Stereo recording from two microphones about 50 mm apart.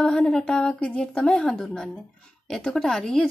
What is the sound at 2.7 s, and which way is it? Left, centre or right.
Speech, centre.